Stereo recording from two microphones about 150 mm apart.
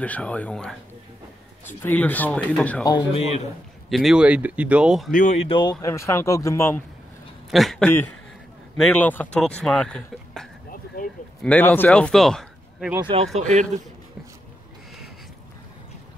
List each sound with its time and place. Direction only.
0.0 s speech: 10° left (ahead or behind)
3.1 s speech: 45° left (ahead or behind)
3.9 s speech: 5° right (ahead or behind)
5.1 s speech: 50° left (ahead or behind)
5.5 s speech: 30° left (ahead or behind)
7.5 s speech: centre (ahead or behind)
13.0 s speech: 40° right (ahead or behind)
13.4 s speech: 50° right (ahead or behind)